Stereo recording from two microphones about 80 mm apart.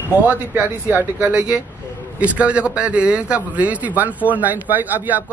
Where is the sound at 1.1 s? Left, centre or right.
Centre.